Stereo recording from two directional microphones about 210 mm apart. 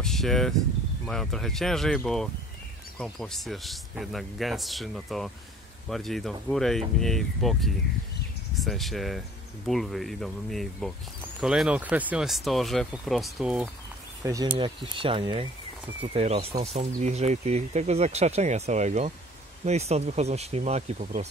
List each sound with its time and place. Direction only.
0.0 s speech: centre (ahead or behind)
14.2 s speech: 15° right (ahead or behind); by 21.3 s 30° right (ahead or behind)